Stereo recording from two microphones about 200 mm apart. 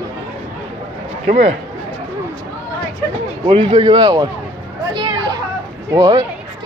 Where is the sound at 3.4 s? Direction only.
25° right (ahead or behind).